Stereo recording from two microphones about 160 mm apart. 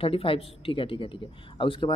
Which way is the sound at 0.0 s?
35° left (ahead or behind).